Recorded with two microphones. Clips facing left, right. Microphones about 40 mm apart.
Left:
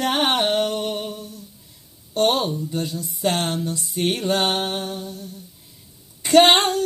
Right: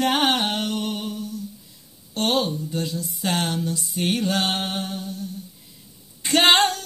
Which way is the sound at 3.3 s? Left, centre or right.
Left.